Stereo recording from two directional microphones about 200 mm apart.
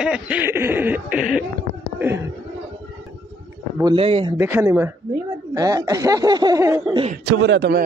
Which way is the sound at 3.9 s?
30° right (ahead or behind).